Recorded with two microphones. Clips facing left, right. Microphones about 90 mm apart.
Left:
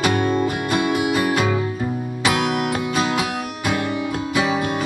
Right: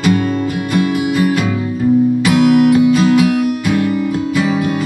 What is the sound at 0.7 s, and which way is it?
Music, 20° left (ahead or behind).